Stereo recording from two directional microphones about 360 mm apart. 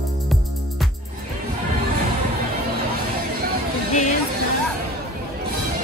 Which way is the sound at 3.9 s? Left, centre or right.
Centre.